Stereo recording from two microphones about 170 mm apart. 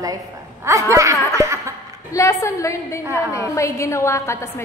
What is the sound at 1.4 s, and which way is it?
Laughter, 20° right (ahead or behind).